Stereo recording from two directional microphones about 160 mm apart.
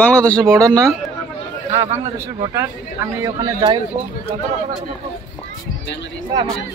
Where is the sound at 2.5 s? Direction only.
15° right (ahead or behind).